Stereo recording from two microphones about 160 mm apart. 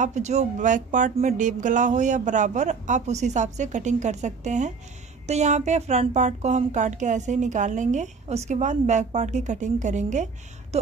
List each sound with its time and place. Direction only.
0.0 s speech: 45° right (ahead or behind)